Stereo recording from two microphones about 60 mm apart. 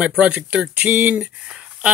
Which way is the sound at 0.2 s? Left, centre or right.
Right.